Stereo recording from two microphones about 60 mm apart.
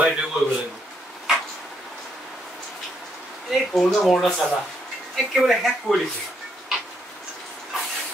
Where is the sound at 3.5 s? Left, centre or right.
Centre.